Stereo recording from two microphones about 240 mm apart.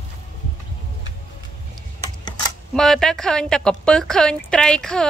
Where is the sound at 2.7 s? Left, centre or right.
Centre.